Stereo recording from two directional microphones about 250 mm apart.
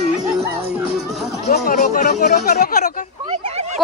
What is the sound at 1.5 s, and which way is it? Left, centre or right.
Speech, left.